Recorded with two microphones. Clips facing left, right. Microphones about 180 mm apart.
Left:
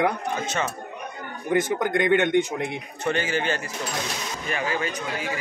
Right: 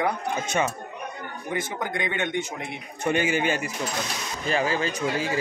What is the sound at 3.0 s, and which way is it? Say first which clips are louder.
Speech: right 2 dB; 15° right (ahead or behind).